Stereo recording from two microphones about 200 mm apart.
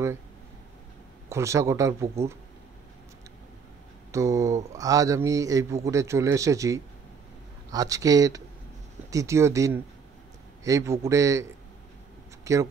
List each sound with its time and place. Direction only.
1.3 s a man's voice: 15° right (ahead or behind)
4.1 s a man's voice: 15° right (ahead or behind)
12.5 s speech: 15° right (ahead or behind)